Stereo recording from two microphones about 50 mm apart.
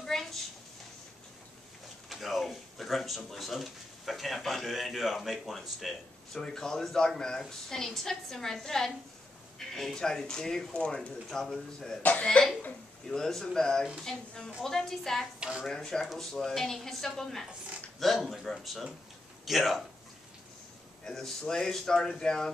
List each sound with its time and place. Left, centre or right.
0.0 s a sound: centre
2.0 s speech: centre
6.4 s a woman's voice: centre
10.7 s speech: left
11.2 s a woman's voice: centre
12.0 s speech: left
12.3 s a woman's voice: centre
21.0 s a woman's voice: centre